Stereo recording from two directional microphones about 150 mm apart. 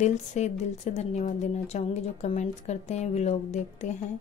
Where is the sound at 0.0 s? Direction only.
50° left (ahead or behind).